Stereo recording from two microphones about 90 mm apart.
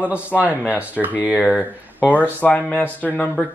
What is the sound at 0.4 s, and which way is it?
Speech, 15° right (ahead or behind).